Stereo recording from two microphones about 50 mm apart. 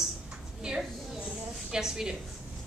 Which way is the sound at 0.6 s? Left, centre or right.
Centre.